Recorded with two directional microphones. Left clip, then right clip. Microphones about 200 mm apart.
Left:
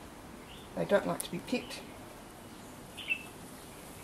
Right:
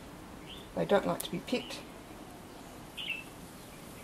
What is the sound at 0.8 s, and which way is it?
Speech, 5° right (ahead or behind).